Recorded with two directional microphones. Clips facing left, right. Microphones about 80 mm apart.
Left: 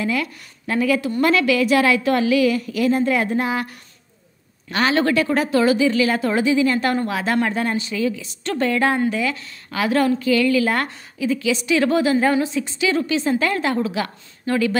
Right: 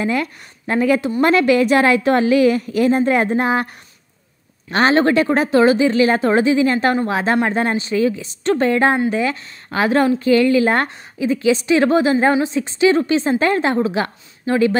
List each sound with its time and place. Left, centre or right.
0.0 s a woman's voice: right
4.6 s a woman's voice: right